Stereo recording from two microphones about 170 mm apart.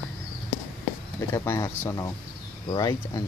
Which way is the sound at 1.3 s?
15° left (ahead or behind).